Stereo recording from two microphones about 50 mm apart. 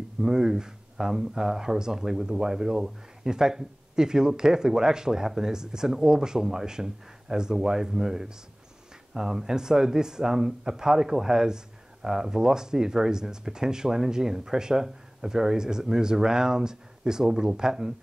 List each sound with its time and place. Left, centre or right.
0.2 s speech: centre